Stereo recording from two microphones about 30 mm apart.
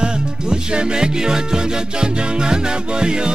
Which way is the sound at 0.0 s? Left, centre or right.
Right.